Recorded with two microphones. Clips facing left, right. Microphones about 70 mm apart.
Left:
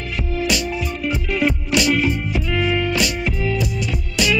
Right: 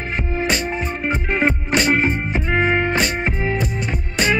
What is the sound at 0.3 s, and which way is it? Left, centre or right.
Music, right.